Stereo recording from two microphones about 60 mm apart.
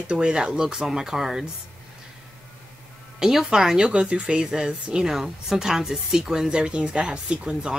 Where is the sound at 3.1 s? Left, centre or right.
Centre.